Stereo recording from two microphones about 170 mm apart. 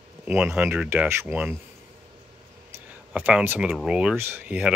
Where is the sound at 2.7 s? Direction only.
10° right (ahead or behind).